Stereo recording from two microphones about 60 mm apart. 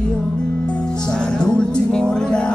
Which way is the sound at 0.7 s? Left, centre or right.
Centre.